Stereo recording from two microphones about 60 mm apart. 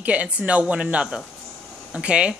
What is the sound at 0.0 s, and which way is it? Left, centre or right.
A woman's voice, right.